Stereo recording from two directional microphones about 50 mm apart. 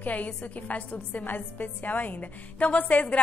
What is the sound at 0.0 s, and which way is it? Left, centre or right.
A woman's voice, left.